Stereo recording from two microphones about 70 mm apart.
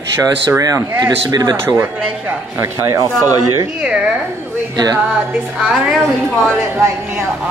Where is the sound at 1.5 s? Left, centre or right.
Right.